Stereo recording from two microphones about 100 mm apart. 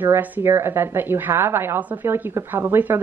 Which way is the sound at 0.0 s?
20° right (ahead or behind).